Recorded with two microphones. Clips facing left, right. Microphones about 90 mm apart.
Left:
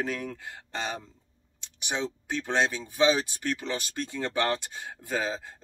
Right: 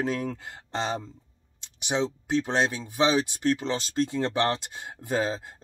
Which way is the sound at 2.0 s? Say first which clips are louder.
Right 7 dB; 25° right (ahead or behind).